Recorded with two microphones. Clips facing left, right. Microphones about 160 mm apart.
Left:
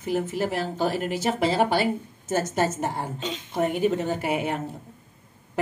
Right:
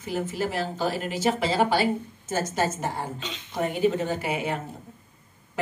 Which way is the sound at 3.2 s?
45° left (ahead or behind).